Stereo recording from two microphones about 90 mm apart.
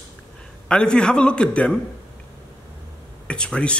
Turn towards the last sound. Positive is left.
turn(degrees=10)  # may be behind; listen again after turning